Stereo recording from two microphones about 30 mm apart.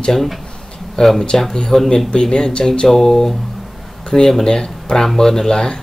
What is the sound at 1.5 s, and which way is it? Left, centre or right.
Speech, left.